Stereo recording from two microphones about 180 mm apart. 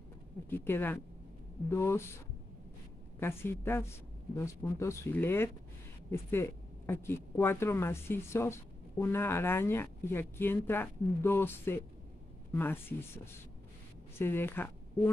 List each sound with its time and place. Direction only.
0.5 s speech: 10° left (ahead or behind)
3.2 s speech: 15° left (ahead or behind)